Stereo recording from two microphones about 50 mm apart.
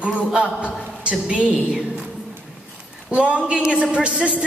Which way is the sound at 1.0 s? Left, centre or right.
Right.